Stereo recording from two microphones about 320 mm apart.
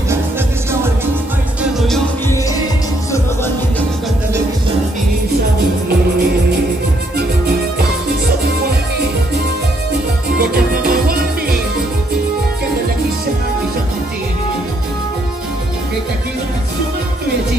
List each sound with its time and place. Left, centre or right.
1.6 s music: centre
10.5 s music: right